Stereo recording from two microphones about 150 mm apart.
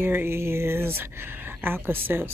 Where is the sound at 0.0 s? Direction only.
15° right (ahead or behind).